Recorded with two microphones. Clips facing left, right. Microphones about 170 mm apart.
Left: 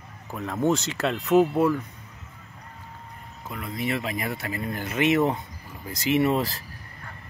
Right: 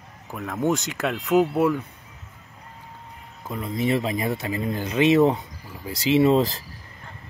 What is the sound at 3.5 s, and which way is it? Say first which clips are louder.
Speech: right 5 dB; 25° right (ahead or behind).